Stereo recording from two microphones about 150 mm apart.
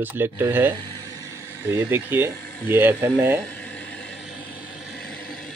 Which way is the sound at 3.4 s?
10° left (ahead or behind).